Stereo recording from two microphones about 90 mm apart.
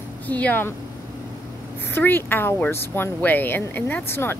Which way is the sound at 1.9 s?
25° left (ahead or behind).